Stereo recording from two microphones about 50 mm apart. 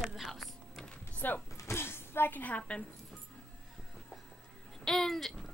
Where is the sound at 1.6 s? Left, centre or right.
Left.